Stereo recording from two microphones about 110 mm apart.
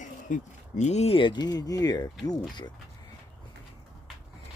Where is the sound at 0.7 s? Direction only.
90° left.